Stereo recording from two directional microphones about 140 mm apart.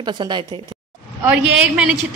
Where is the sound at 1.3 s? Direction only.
10° right (ahead or behind).